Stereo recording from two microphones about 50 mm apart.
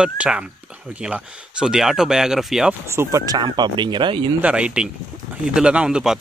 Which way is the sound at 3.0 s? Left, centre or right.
Right.